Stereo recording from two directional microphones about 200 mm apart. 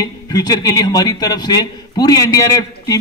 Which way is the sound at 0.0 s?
20° left (ahead or behind).